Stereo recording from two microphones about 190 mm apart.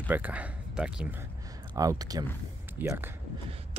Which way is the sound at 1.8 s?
20° right (ahead or behind).